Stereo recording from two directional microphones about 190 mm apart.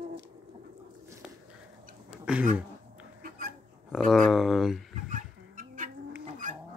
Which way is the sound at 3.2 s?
50° right (ahead or behind).